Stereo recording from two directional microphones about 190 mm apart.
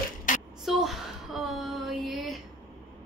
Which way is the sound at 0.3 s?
45° left (ahead or behind).